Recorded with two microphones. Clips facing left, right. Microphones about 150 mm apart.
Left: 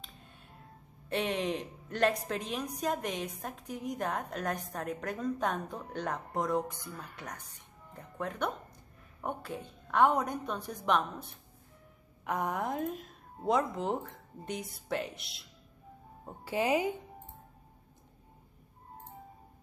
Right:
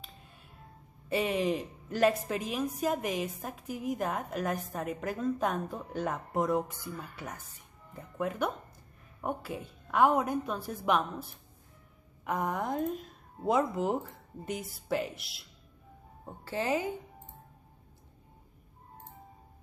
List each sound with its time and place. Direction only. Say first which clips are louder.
1.0 s a woman's voice: right 3 dB; 5° right (ahead or behind)
16.4 s speech: left 2 dB; 15° left (ahead or behind)